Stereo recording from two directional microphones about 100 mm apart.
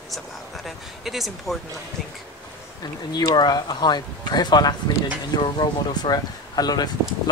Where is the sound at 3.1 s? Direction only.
45° left (ahead or behind).